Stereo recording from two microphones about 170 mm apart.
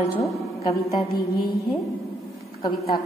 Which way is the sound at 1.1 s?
65° left (ahead or behind).